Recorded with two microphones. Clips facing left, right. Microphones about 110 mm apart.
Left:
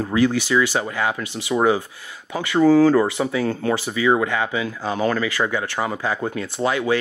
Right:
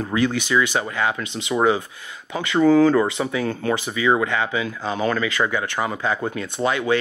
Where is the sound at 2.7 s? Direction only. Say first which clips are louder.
Left 1 dB; 60° right (ahead or behind).